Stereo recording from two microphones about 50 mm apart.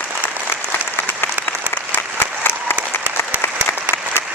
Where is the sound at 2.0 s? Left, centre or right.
Left.